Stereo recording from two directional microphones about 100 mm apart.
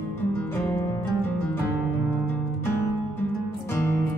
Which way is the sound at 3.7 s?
20° left (ahead or behind).